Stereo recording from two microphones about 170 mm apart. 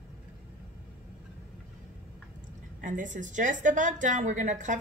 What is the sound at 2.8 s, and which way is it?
A woman's voice, 50° right (ahead or behind).